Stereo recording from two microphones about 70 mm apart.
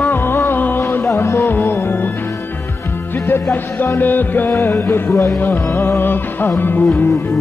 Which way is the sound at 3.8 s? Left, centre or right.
Left.